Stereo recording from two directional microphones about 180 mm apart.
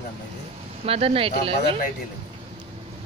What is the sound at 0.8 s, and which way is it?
Speech, 35° right (ahead or behind).